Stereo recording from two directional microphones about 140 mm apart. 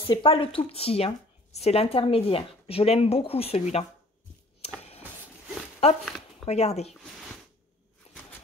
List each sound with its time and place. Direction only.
0.0 s speech: 40° left (ahead or behind)
6.4 s speech: 50° left (ahead or behind)
8.1 s a sound: 50° left (ahead or behind)